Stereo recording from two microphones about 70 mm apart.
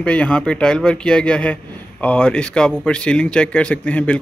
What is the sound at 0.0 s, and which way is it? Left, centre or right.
A man's voice, centre.